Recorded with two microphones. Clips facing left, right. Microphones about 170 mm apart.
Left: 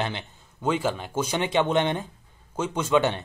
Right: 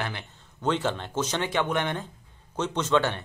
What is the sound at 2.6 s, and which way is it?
Speech, 10° left (ahead or behind).